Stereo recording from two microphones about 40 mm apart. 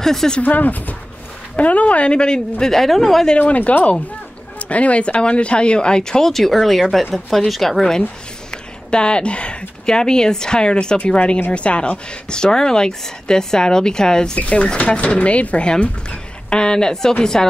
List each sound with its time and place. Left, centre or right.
0.0 s speech: centre
0.4 s speech: left
2.6 s speech: centre
3.3 s speech: left; by 7.8 s centre
8.5 s speech: left
14.4 s speech: left